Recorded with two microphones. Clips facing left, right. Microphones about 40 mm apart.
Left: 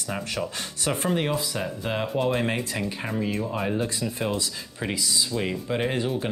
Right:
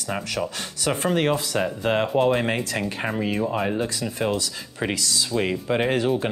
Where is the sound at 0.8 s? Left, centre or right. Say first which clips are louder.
Right 4 dB; right.